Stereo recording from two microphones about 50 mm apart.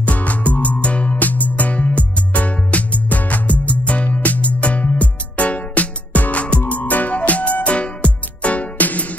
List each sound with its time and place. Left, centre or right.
0.0 s music: left